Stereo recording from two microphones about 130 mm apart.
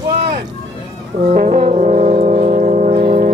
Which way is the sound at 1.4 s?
65° right (ahead or behind).